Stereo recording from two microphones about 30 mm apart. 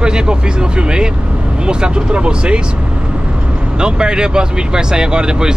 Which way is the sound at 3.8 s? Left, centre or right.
Right.